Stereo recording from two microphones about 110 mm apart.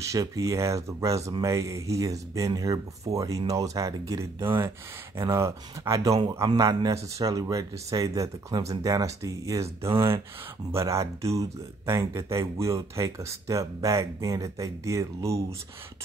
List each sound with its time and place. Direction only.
0.0 s speech: 30° right (ahead or behind)